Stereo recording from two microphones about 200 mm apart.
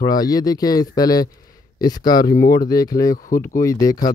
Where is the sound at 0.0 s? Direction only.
20° left (ahead or behind).